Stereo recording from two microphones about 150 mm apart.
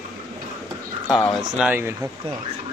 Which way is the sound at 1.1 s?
5° left (ahead or behind).